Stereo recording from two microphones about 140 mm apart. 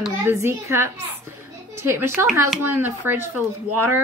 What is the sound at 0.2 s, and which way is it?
A woman's voice, 20° right (ahead or behind).